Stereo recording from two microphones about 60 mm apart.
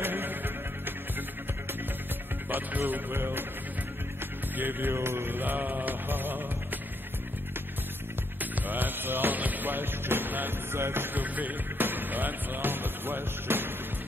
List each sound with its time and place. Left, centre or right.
0.0 s music: right
2.5 s music: right
4.6 s music: right
8.4 s music: right
11.2 s speech: right